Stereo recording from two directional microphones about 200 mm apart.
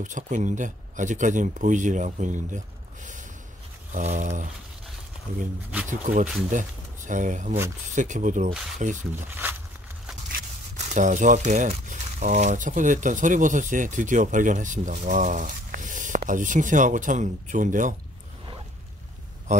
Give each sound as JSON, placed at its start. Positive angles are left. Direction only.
{"t": 0.0, "sound": "speech", "side_deg": -40}
{"t": 5.9, "sound": "speech", "side_deg": -40}
{"t": 9.3, "sound": "speech", "side_deg": -10}
{"t": 10.3, "sound": "speech", "side_deg": -35}